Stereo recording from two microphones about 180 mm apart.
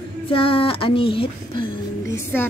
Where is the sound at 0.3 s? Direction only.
30° left (ahead or behind).